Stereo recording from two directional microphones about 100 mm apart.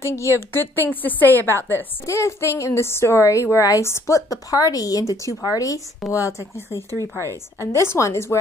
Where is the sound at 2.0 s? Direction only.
30° left (ahead or behind).